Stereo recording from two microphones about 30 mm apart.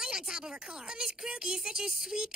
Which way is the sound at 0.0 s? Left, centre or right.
Right.